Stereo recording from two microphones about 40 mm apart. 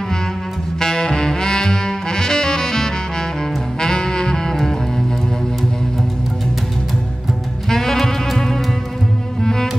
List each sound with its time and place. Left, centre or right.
0.7 s saxophone: centre
3.8 s music: centre
7.7 s saxophone: centre
9.4 s cello: centre